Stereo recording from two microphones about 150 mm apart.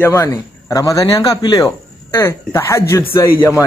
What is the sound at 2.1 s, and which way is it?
Speech, 15° left (ahead or behind).